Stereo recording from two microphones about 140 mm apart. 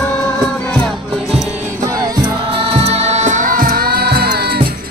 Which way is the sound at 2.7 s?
50° right (ahead or behind).